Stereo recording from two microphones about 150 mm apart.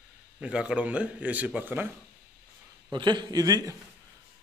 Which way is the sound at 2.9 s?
30° right (ahead or behind).